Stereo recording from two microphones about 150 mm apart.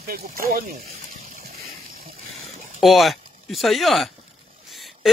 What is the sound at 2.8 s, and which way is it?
Speech, centre (ahead or behind).